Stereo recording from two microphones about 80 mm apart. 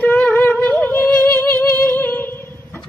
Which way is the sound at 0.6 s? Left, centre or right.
Left.